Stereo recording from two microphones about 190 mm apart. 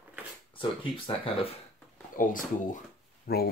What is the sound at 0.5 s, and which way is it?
Speech, 25° left (ahead or behind).